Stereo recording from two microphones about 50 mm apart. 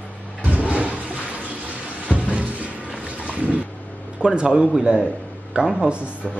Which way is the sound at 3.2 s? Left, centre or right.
Right.